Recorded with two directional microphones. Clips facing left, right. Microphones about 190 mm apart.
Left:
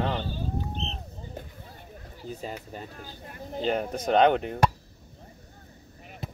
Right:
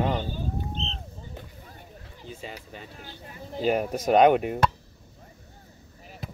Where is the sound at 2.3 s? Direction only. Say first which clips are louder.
Left 3 dB; 40° left (ahead or behind).